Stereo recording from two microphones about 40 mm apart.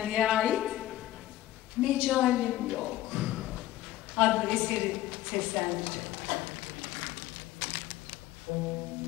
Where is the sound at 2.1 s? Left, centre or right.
Centre.